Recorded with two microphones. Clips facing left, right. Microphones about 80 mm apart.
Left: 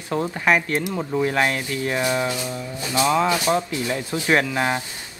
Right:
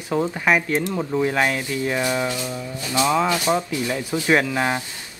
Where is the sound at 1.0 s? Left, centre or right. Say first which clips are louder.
Right 1 dB; centre.